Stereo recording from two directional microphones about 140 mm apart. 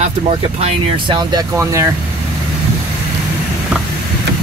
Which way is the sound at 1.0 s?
30° right (ahead or behind).